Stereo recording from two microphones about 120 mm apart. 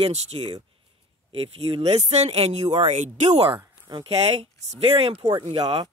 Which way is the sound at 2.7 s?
75° right (ahead or behind).